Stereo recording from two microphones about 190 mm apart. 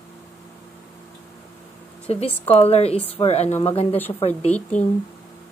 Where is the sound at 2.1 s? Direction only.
30° left (ahead or behind).